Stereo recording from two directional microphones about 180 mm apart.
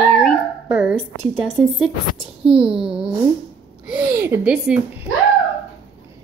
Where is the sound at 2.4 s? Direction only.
30° right (ahead or behind).